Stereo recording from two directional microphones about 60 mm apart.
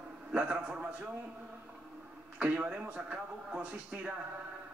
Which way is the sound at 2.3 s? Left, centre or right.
Right.